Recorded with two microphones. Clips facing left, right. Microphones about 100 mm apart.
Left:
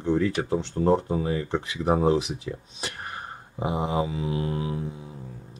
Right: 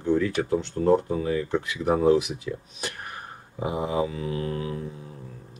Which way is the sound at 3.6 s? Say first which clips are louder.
Even; 25° left (ahead or behind).